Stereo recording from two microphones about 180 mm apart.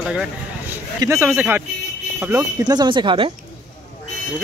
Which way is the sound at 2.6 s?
25° right (ahead or behind).